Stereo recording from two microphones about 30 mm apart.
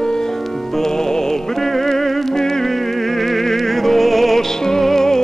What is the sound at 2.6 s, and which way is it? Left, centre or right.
Music, centre.